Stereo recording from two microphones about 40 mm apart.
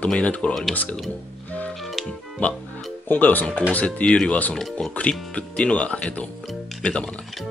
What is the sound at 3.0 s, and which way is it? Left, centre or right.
Speech, left.